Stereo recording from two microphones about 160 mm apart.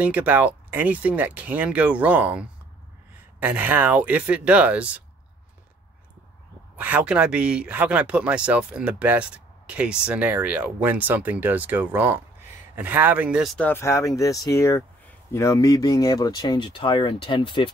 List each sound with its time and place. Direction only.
0.0 s speech: 10° right (ahead or behind)
6.8 s speech: 10° right (ahead or behind)
13.6 s speech: 15° left (ahead or behind); by 17.6 s 30° left (ahead or behind)